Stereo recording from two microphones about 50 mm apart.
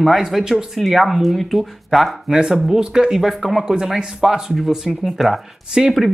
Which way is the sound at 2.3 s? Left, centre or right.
Centre.